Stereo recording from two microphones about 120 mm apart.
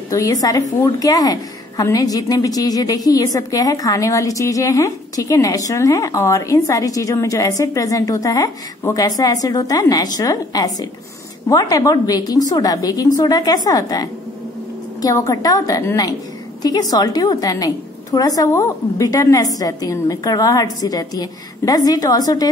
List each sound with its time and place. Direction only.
0.1 s a woman's voice: 30° left (ahead or behind)